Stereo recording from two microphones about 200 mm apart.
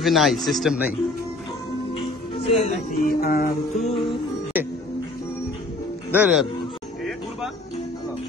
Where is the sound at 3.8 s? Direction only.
30° left (ahead or behind).